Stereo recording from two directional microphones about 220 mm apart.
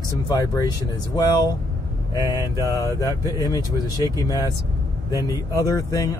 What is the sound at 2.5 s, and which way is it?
Speech, 15° left (ahead or behind).